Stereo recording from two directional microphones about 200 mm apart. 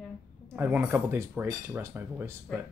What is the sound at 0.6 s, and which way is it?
Speech, 10° right (ahead or behind).